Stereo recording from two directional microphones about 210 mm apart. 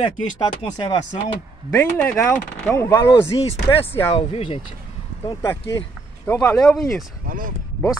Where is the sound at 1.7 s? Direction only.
10° left (ahead or behind); by 4.6 s 25° left (ahead or behind).